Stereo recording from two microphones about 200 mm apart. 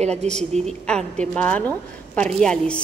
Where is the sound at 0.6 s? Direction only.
5° left (ahead or behind).